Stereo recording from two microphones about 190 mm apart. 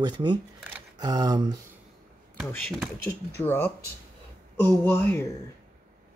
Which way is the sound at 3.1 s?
10° left (ahead or behind).